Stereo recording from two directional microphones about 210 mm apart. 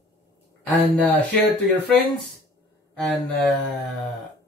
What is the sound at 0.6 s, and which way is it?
Speech, 5° left (ahead or behind).